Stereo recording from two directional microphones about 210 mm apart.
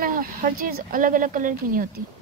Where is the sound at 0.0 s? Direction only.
40° right (ahead or behind).